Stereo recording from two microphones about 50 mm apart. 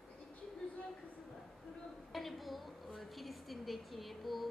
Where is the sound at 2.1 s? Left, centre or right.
Centre.